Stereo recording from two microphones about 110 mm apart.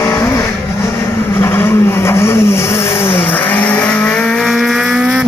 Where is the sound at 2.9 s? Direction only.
60° left (ahead or behind).